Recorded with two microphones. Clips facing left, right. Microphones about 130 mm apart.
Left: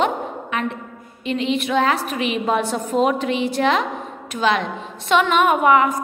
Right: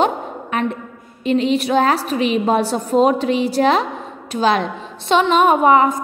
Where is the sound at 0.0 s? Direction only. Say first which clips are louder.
Right 2 dB; 40° right (ahead or behind).